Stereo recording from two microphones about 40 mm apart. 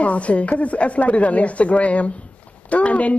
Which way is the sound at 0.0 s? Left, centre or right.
Left.